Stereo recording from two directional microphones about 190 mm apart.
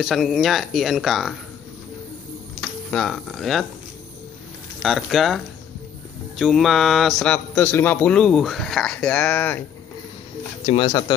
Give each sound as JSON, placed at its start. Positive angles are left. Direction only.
{"t": 0.0, "sound": "speech", "side_deg": 0}
{"t": 2.9, "sound": "speech", "side_deg": 5}
{"t": 4.8, "sound": "speech", "side_deg": 0}
{"t": 10.6, "sound": "speech", "side_deg": 30}